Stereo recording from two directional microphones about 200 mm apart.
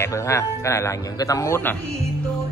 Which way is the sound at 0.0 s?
15° left (ahead or behind).